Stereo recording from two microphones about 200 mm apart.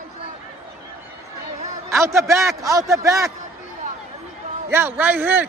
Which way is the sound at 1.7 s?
15° right (ahead or behind).